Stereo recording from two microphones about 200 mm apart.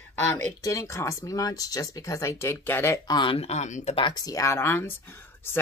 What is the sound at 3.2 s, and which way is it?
Speech, 25° left (ahead or behind).